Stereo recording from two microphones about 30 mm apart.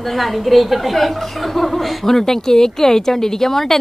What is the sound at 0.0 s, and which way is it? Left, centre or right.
Speech, centre.